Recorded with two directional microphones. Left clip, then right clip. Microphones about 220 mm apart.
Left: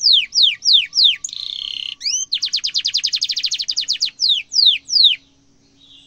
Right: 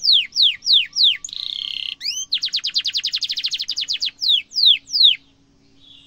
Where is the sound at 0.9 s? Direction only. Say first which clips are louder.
Left 2 dB; 20° right (ahead or behind).